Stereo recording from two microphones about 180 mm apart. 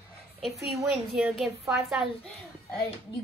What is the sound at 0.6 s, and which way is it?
A woman's voice, centre (ahead or behind).